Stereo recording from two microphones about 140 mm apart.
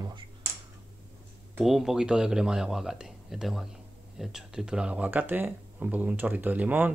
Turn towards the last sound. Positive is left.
turn(degrees=-15)  # may be behind; listen again after turning